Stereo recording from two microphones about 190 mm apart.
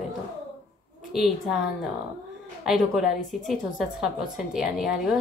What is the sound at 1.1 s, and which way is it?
Speech, centre (ahead or behind).